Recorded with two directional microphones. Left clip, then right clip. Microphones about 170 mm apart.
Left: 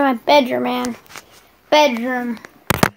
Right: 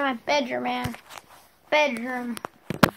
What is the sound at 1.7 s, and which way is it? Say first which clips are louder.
Speech: left 8 dB; 20° left (ahead or behind).